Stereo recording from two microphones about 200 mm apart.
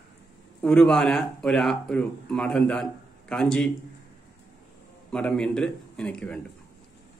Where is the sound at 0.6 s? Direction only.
5° left (ahead or behind).